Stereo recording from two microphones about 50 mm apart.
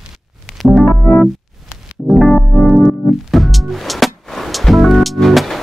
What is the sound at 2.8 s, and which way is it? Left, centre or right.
Music, centre.